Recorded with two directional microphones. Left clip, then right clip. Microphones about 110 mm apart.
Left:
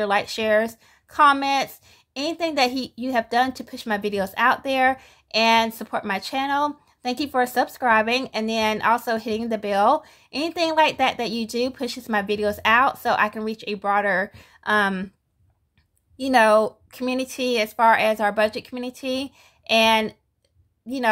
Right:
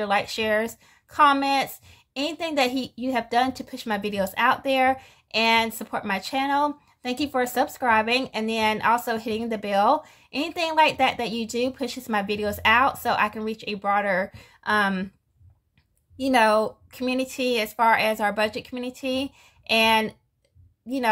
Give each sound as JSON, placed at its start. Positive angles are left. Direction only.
{"t": 0.0, "sound": "speech", "side_deg": 35}
{"t": 16.2, "sound": "a woman's voice", "side_deg": 35}